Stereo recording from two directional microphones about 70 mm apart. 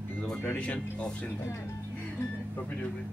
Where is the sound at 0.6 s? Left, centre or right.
Centre.